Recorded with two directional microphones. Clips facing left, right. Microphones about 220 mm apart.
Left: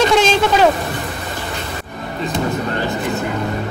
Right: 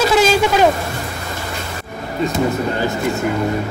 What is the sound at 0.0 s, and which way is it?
Vehicle, 5° right (ahead or behind).